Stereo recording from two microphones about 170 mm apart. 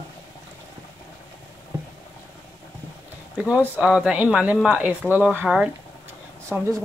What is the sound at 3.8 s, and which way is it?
Speech, 5° right (ahead or behind).